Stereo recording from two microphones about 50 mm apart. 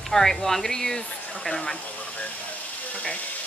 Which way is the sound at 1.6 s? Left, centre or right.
Left.